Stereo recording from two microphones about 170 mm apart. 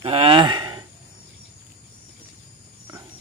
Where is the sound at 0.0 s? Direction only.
30° right (ahead or behind).